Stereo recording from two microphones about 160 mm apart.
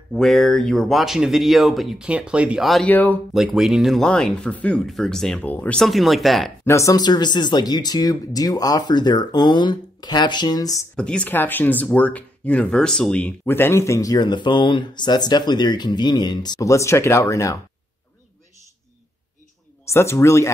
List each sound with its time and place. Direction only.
0.1 s speech: centre (ahead or behind)
2.9 s speech: 10° left (ahead or behind)
3.3 s speech: centre (ahead or behind)
6.6 s speech: 20° left (ahead or behind)
11.0 s speech: 5° left (ahead or behind)
19.9 s speech: 15° left (ahead or behind)